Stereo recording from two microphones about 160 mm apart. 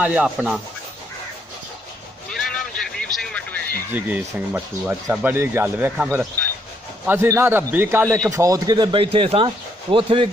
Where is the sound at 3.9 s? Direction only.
10° right (ahead or behind).